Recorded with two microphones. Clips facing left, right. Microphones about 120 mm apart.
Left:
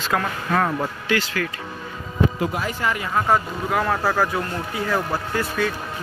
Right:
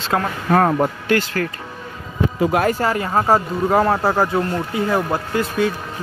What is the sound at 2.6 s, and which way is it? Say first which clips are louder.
Speech: right 6 dB; 40° right (ahead or behind).